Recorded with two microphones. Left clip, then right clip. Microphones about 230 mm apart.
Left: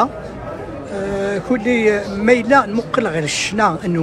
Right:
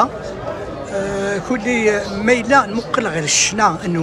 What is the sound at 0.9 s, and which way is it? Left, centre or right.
Speech, centre.